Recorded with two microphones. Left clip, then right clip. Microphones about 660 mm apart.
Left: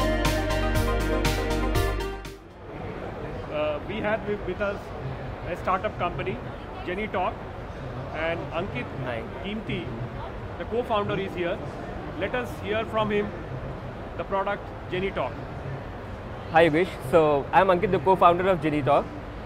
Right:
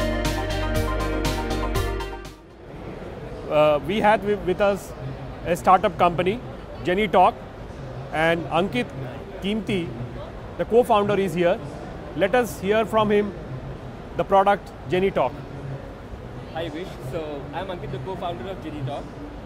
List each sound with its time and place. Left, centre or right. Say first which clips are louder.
0.0 s music: even; centre
3.5 s speech: right 10 dB; right
16.5 s speech: left 12 dB; left